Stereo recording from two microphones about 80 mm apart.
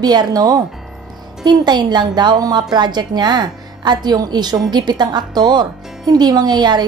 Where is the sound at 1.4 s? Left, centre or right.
Right.